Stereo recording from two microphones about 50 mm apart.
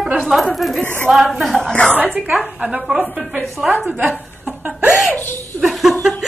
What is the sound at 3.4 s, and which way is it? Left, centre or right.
Speech, centre.